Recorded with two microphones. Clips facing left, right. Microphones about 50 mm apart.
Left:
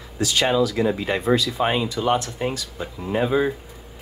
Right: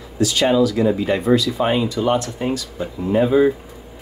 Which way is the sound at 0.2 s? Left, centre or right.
Left.